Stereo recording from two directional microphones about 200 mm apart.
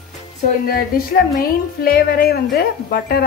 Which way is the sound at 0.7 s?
50° left (ahead or behind).